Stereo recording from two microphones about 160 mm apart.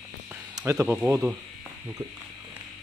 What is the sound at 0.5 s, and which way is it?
Speech, 15° right (ahead or behind).